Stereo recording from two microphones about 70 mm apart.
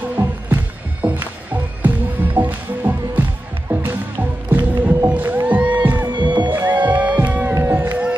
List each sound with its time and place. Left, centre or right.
0.1 s music: right
6.1 s music: right
6.5 s music: right